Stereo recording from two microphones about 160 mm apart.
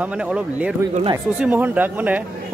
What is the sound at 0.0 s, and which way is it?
A man's voice, 10° right (ahead or behind).